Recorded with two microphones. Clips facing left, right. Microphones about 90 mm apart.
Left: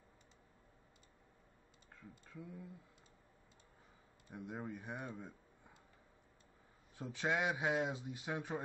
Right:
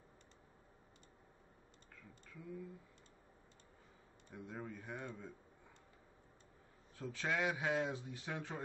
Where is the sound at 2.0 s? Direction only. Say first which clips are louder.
Left 4 dB; 25° left (ahead or behind).